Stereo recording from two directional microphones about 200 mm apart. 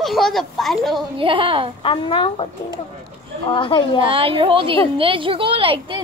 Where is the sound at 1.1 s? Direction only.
25° right (ahead or behind).